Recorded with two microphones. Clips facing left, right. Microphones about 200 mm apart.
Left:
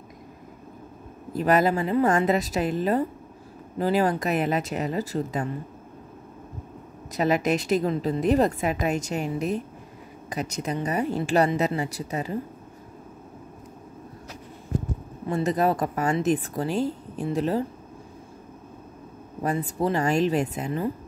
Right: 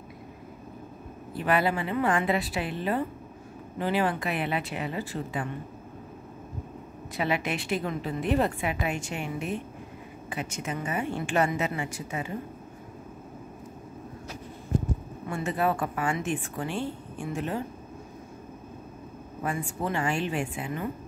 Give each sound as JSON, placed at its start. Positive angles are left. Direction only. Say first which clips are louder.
{"t": 1.4, "sound": "a woman's voice", "louder": "left 5 dB", "side_deg": 40}
{"t": 7.2, "sound": "a woman's voice", "louder": "left 6 dB", "side_deg": 40}
{"t": 15.2, "sound": "a woman's voice", "louder": "left 5 dB", "side_deg": 35}
{"t": 19.4, "sound": "a woman's voice", "louder": "left 6 dB", "side_deg": 35}